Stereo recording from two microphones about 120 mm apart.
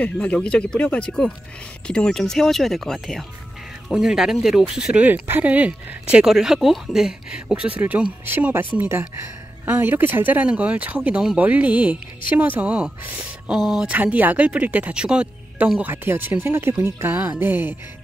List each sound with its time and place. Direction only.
0.0 s speech: 10° left (ahead or behind); by 17.7 s 15° right (ahead or behind)